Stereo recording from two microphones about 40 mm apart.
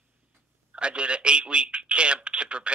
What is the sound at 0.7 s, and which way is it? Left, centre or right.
Speech, right.